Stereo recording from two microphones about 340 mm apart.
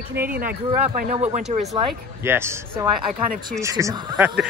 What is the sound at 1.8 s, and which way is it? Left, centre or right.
Speech, centre.